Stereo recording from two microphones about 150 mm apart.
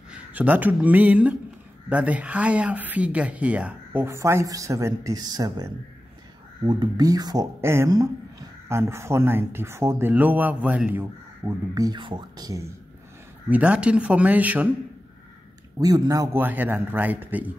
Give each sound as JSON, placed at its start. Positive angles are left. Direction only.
{"t": 0.1, "sound": "speech", "side_deg": -10}
{"t": 6.7, "sound": "speech", "side_deg": -25}
{"t": 11.4, "sound": "speech", "side_deg": -25}
{"t": 13.5, "sound": "speech", "side_deg": -10}
{"t": 15.8, "sound": "speech", "side_deg": -25}